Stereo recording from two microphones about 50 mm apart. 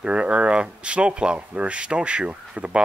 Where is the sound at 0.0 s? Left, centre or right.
Right.